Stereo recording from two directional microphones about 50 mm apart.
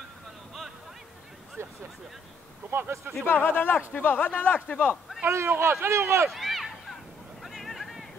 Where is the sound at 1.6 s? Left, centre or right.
Right.